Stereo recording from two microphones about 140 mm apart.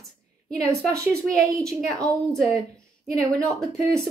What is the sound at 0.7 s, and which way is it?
Speech, 20° right (ahead or behind).